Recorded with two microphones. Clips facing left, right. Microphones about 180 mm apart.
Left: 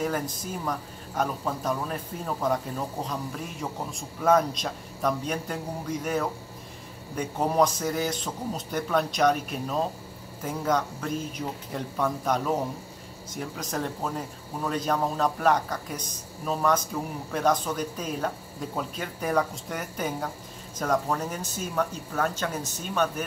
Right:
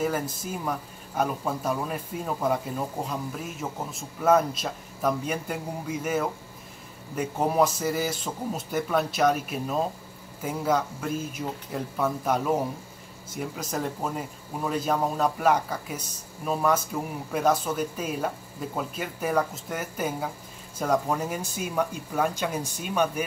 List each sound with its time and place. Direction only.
0.0 s speech: 5° right (ahead or behind)